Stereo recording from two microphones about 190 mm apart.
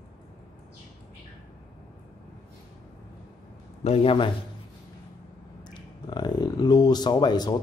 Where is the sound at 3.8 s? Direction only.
30° left (ahead or behind).